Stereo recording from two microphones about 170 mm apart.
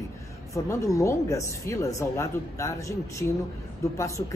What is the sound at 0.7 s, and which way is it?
Speech, 15° left (ahead or behind).